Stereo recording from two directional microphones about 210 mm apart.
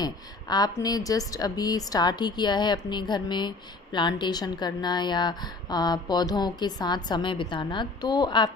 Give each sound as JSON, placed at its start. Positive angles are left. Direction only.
{"t": 0.0, "sound": "a woman's voice", "side_deg": 20}